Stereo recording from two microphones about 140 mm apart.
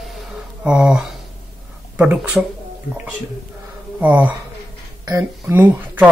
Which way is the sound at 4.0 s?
10° right (ahead or behind).